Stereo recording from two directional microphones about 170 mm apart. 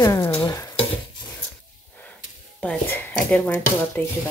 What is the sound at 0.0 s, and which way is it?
Stir, 20° left (ahead or behind).